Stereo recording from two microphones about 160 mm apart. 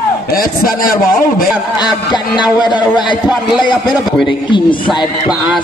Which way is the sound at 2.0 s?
30° left (ahead or behind).